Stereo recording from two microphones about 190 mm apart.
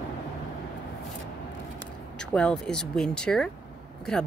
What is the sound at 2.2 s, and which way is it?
A woman's voice, 5° left (ahead or behind).